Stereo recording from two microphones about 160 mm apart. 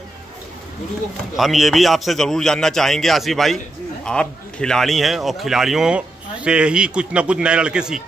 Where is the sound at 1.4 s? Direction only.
Centre (ahead or behind).